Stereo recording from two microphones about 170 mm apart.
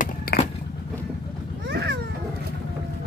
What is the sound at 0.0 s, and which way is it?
Skateboard, 65° left (ahead or behind).